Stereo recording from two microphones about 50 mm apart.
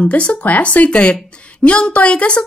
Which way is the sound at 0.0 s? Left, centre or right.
Left.